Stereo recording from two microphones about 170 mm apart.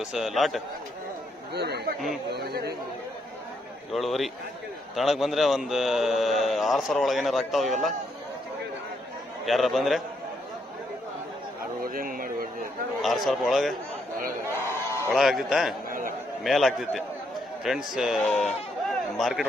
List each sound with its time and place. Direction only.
0.0 s speech: centre (ahead or behind)
1.5 s speech: 75° right (ahead or behind)
3.9 s speech: centre (ahead or behind)
9.5 s speech: centre (ahead or behind)
11.8 s speech: 55° right (ahead or behind)
13.0 s speech: centre (ahead or behind)
14.4 s crowd: 15° right (ahead or behind)
15.1 s speech: centre (ahead or behind)